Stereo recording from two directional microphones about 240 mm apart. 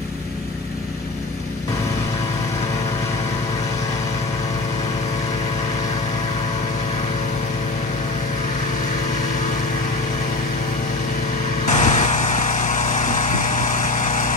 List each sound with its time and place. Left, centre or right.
11.7 s vehicle: left